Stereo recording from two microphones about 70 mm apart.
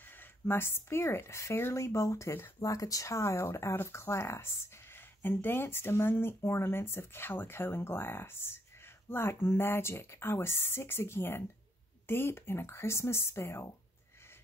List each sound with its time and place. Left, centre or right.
0.2 s speech: left